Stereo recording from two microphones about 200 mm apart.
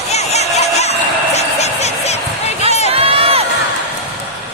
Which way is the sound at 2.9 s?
30° right (ahead or behind).